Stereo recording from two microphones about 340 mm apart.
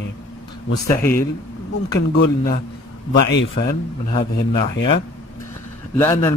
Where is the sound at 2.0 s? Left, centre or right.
Left.